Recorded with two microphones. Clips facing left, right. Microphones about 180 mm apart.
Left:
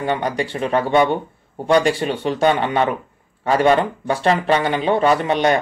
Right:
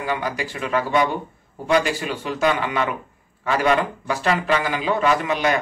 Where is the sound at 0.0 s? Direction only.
30° left (ahead or behind).